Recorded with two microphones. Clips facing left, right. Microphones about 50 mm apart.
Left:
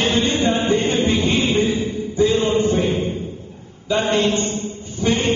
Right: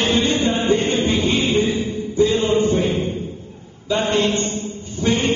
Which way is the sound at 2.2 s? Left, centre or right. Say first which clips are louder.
Even; centre.